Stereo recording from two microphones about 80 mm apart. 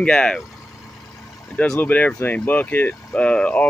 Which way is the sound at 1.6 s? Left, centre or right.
Centre.